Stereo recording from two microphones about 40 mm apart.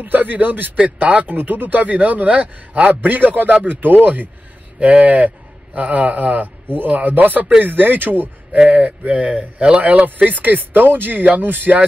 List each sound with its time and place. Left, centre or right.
0.0 s a man's voice: right
0.8 s speech: right
1.3 s speech: right
3.0 s a man's voice: right
8.6 s a man's voice: right